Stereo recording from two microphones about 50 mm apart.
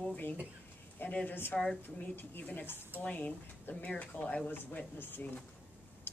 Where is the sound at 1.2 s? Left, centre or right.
Left.